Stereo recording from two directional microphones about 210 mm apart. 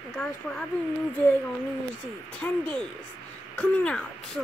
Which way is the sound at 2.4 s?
10° left (ahead or behind).